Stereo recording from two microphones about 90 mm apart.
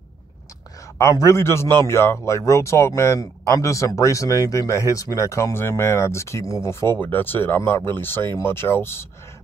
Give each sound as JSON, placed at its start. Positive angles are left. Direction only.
{"t": 0.9, "sound": "a man's voice", "side_deg": 35}